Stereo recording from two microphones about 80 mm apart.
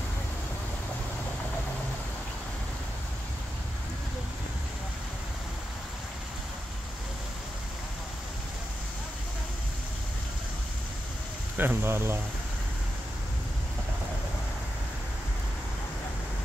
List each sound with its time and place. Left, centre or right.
11.5 s speech: right